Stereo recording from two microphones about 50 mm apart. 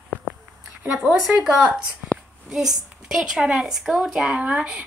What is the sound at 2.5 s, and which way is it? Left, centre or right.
A woman's voice, centre.